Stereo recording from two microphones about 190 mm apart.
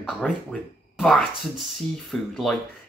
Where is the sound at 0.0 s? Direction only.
Centre (ahead or behind).